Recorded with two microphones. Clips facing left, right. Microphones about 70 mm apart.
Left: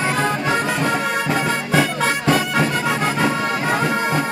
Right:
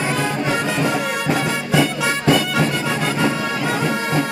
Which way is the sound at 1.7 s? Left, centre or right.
Left.